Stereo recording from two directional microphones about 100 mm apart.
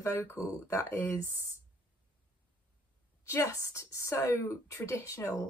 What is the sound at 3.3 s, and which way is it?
Speech, 30° left (ahead or behind).